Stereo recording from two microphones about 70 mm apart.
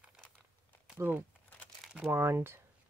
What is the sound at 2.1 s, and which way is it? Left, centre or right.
Speech, right.